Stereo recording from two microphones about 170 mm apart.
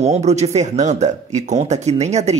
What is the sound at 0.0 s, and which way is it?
Speech, 40° right (ahead or behind).